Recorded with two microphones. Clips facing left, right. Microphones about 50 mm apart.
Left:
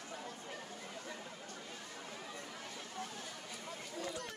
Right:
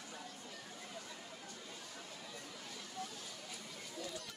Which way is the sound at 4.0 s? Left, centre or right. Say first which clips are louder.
Left 4 dB; left.